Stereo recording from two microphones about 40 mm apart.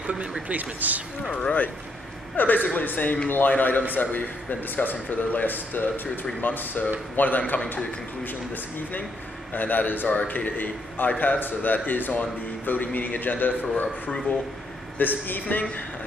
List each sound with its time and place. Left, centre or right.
0.1 s a sound: right
0.5 s speech: right
2.3 s a man's voice: left